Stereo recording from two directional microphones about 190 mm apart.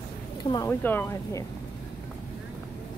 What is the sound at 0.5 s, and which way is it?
Speech, 15° left (ahead or behind).